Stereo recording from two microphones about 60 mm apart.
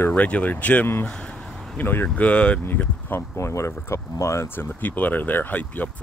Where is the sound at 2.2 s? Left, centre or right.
Left.